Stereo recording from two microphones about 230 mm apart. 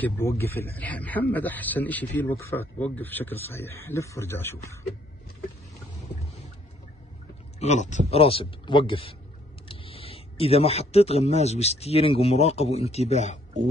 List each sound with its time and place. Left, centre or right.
0.0 s a man's voice: centre
7.6 s speech: left